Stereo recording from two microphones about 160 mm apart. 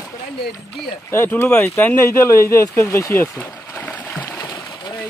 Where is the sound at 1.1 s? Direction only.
15° left (ahead or behind).